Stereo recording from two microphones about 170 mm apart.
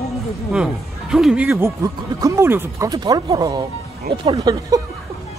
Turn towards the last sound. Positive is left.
turn(degrees=-20)  # may be behind; listen again after turning